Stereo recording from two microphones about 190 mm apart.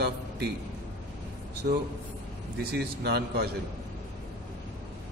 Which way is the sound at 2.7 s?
55° right (ahead or behind).